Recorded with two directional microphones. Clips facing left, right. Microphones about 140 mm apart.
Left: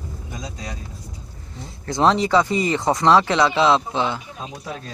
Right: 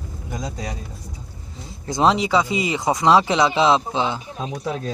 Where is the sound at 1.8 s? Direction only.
10° right (ahead or behind).